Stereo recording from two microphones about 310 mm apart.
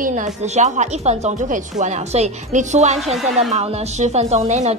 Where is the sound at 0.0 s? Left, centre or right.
Right.